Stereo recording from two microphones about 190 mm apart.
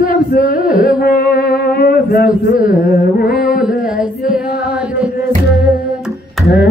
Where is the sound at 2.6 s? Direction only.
45° left (ahead or behind).